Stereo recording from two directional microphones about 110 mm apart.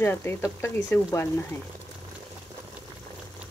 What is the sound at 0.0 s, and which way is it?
Speech, 20° left (ahead or behind).